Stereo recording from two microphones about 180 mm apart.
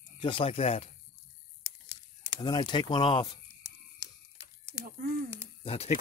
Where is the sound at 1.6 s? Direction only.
15° right (ahead or behind).